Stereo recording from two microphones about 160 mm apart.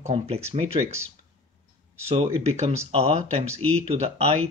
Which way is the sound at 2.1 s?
40° right (ahead or behind).